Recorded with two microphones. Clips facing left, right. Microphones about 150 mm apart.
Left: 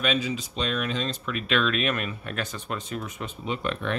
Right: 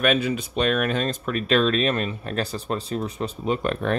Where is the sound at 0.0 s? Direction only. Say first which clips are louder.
Right 5 dB; 55° right (ahead or behind).